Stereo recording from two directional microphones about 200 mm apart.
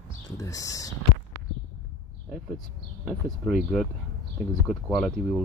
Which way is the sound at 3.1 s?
Centre (ahead or behind).